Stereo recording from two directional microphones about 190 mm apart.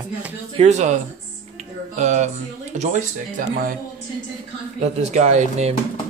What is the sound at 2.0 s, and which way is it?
Speech, 40° right (ahead or behind).